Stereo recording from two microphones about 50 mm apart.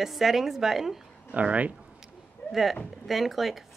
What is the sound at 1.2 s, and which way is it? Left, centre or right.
Speech, right.